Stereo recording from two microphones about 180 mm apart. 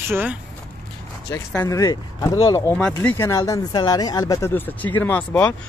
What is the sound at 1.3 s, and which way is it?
Speech, 15° left (ahead or behind).